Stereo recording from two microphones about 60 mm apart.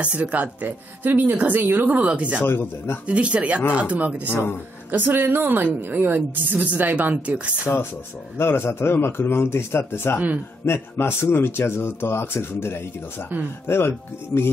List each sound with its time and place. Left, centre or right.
0.0 s speech: right
2.4 s speech: left
3.1 s speech: right
4.9 s a woman's voice: right
7.6 s a man's voice: left